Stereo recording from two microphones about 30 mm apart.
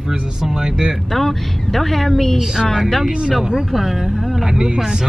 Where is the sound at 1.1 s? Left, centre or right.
Centre.